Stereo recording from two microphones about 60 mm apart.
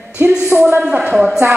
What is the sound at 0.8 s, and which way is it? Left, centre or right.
Speech, right.